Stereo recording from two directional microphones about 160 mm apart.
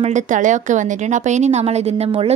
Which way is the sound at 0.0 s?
50° right (ahead or behind).